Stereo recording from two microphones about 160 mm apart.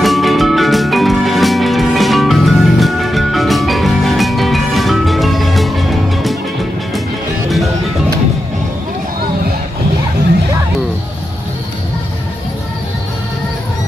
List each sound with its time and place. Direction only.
0.0 s music: centre (ahead or behind)